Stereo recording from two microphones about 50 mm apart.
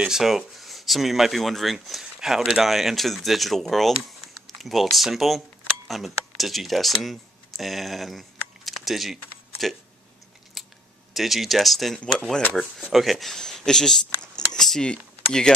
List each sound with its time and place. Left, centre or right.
0.1 s speech: centre
10.6 s scissors: centre
11.1 s speech: centre